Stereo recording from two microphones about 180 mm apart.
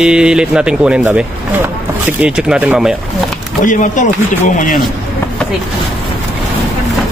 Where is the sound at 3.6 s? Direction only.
45° left (ahead or behind).